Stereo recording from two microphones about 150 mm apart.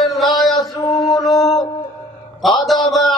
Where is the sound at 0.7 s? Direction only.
20° left (ahead or behind).